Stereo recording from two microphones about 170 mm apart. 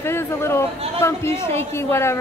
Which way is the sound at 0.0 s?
15° left (ahead or behind).